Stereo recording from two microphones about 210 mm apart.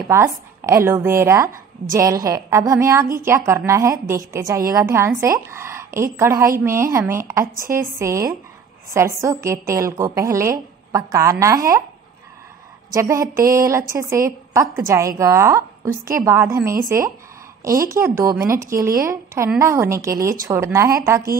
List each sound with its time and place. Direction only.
0.1 s a woman's voice: 10° right (ahead or behind)
12.9 s a woman's voice: 15° right (ahead or behind)
17.8 s a woman's voice: 15° right (ahead or behind)